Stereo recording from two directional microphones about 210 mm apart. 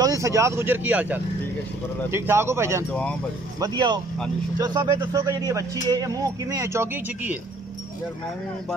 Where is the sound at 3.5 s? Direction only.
20° right (ahead or behind).